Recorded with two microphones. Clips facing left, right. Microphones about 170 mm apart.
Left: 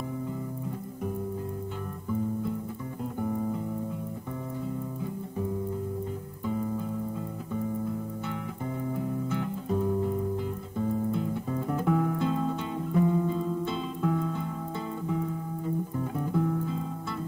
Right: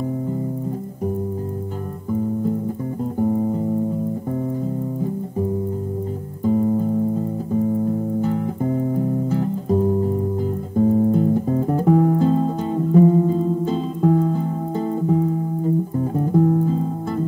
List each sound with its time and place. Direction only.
3.2 s music: 35° right (ahead or behind)
6.4 s music: 40° right (ahead or behind)